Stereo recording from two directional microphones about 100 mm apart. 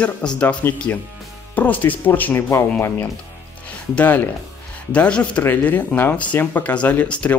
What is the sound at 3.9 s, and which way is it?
Speech, 20° left (ahead or behind).